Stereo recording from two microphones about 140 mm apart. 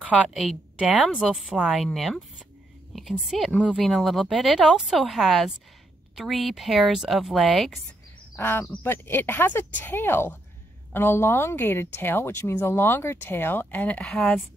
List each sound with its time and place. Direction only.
0.2 s a woman's voice: centre (ahead or behind)
8.4 s speech: 15° left (ahead or behind)